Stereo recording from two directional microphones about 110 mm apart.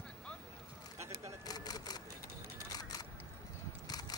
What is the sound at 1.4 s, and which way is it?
Typewriter, 35° left (ahead or behind).